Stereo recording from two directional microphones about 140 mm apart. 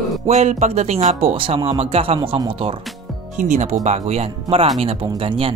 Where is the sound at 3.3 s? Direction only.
55° right (ahead or behind); by 5.5 s 40° right (ahead or behind).